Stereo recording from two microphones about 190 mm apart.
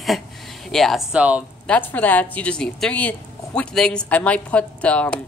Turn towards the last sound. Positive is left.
turn(degrees=5)  # may be behind; listen again after turning